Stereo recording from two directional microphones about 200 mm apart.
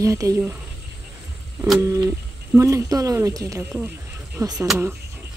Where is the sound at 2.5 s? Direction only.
15° right (ahead or behind).